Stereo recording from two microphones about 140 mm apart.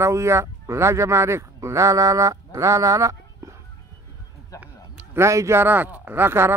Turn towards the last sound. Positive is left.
turn(degrees=-15)  # may be behind; listen again after turning